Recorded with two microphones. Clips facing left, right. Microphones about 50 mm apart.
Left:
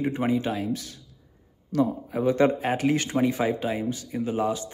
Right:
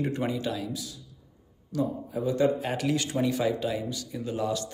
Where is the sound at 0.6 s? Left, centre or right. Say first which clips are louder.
Left 5 dB; left.